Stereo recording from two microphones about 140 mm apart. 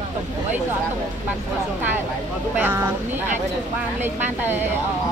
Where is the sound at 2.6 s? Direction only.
15° right (ahead or behind).